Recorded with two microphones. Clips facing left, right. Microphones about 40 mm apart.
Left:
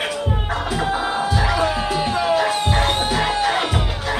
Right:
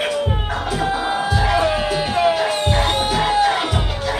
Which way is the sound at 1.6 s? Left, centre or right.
Right.